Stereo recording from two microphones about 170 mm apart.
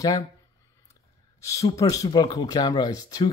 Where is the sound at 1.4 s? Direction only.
20° left (ahead or behind).